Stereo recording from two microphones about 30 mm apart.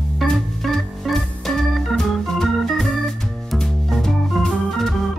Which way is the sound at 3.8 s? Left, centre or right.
Centre.